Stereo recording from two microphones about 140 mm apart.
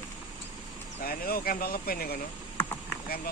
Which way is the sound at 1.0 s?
90° left.